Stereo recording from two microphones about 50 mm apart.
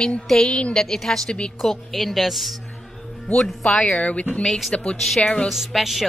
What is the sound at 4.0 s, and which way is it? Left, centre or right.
A woman's voice, left.